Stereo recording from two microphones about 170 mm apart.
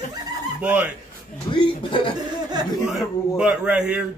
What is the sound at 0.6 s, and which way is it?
Speech, 10° right (ahead or behind).